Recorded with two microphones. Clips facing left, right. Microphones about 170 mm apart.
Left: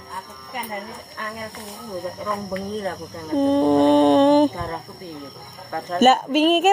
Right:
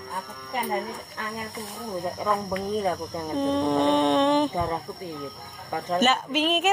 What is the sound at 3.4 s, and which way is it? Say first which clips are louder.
Speech: left 7 dB; 40° left (ahead or behind).